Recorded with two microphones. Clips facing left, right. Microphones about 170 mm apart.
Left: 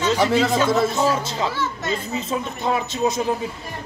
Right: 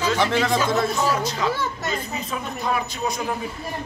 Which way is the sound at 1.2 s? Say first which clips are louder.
Even; 25° left (ahead or behind).